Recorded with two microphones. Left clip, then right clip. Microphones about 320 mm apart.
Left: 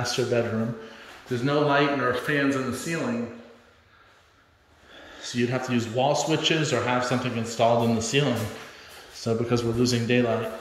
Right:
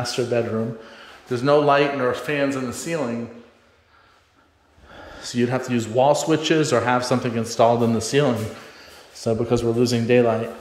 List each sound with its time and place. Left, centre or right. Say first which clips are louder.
0.0 s speech: right 2 dB; centre
4.9 s a man's voice: right 4 dB; centre